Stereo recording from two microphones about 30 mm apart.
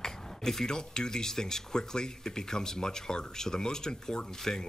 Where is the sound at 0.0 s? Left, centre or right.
Centre.